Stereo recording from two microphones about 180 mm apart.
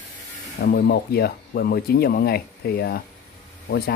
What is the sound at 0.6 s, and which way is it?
Speech, 65° left (ahead or behind).